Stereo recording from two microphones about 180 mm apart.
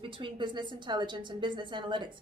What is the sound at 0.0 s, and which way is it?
Speech, 30° right (ahead or behind).